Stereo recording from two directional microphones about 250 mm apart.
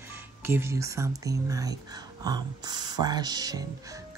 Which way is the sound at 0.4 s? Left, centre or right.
Centre.